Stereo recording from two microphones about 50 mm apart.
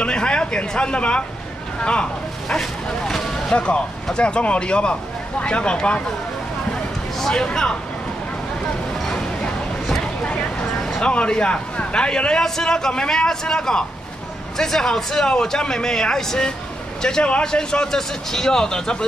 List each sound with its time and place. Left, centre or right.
0.0 s a sound: centre
1.8 s speech: centre
2.4 s speech: centre
3.4 s speech: left
7.2 s speech: centre
11.0 s a man's voice: centre